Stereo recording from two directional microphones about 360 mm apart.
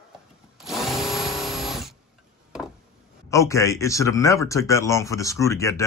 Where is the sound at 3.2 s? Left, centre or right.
Centre.